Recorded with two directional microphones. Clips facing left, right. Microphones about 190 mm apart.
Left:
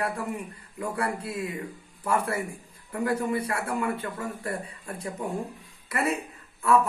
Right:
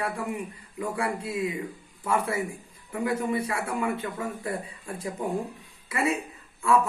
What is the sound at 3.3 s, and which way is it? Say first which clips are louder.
Speech: even; 25° right (ahead or behind).